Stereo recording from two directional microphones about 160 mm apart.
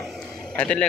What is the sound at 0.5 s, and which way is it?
Speech, 5° left (ahead or behind).